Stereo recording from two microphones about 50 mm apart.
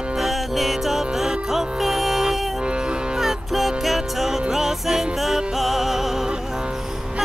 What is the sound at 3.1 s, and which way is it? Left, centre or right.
Music, centre.